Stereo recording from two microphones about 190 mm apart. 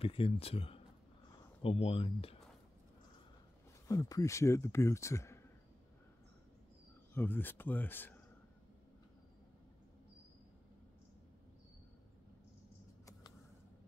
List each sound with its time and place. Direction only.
0.0 s speech: 30° left (ahead or behind)
3.8 s speech: 15° left (ahead or behind)
7.2 s speech: 10° left (ahead or behind)